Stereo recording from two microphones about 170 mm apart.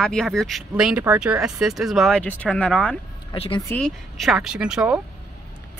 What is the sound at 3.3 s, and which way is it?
Speech, 30° left (ahead or behind).